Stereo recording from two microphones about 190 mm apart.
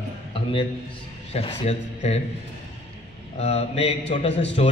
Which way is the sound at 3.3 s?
35° left (ahead or behind).